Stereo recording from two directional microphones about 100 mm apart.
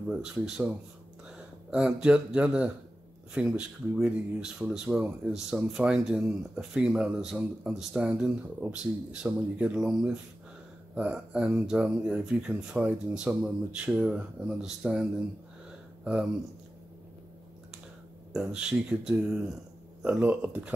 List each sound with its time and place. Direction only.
0.1 s speech: 10° right (ahead or behind)
18.3 s speech: 5° right (ahead or behind)